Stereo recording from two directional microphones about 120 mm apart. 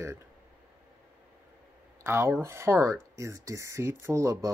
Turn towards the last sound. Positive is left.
turn(degrees=-25)  # may be behind; listen again after turning